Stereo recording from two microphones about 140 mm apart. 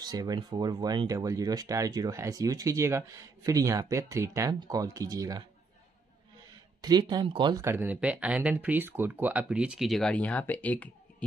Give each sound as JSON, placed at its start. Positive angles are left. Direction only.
{"t": 0.0, "sound": "speech", "side_deg": -30}
{"t": 6.8, "sound": "speech", "side_deg": -30}
{"t": 7.6, "sound": "speech", "side_deg": -15}